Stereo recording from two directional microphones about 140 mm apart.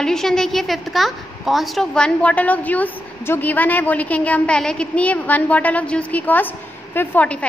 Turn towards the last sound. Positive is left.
turn(degrees=10)  # may be behind; listen again after turning